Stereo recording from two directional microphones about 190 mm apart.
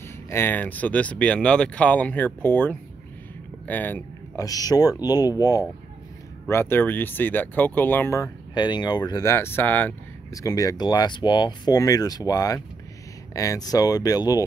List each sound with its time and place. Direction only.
0.3 s speech: 10° left (ahead or behind)